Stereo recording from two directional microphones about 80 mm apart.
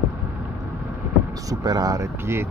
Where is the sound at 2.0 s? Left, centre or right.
Right.